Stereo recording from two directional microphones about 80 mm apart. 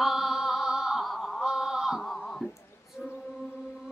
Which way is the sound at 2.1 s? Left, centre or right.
Centre.